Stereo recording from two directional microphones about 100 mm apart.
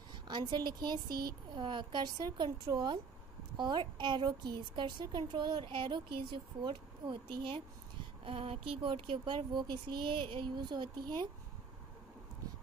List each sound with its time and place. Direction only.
0.3 s a woman's voice: 50° right (ahead or behind)